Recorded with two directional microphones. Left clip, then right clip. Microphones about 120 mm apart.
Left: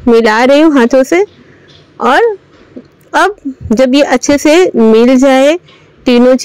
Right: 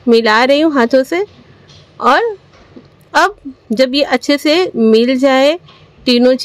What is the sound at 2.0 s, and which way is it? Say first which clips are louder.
A woman's voice: left 3 dB; 25° left (ahead or behind).